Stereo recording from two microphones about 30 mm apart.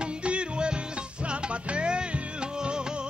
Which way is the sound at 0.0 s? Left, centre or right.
Right.